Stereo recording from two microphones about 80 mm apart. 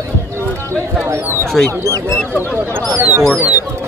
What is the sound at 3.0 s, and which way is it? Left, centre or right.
Speech, right.